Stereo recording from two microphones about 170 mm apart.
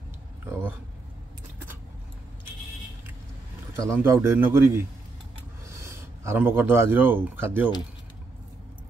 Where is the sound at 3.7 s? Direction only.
15° right (ahead or behind).